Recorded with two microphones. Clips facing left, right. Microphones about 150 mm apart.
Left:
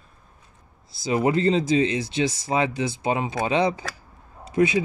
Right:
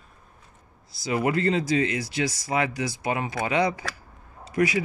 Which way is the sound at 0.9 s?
25° left (ahead or behind).